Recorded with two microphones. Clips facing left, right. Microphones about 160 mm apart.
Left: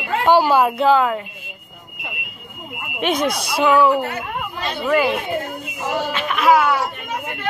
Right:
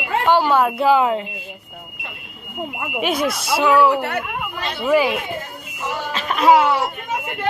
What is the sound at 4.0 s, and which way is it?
Speech, 65° right (ahead or behind).